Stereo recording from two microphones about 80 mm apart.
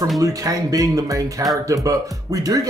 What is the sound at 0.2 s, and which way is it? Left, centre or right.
Speech, right.